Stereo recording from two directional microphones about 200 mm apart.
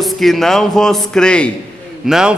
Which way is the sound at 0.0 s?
Centre (ahead or behind).